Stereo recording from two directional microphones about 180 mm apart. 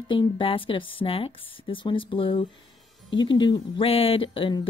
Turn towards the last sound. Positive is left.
turn(degrees=30)  # may be behind; listen again after turning